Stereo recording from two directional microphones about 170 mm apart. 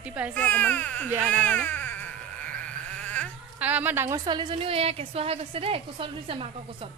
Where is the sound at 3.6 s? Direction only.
10° right (ahead or behind); by 6.5 s 30° right (ahead or behind).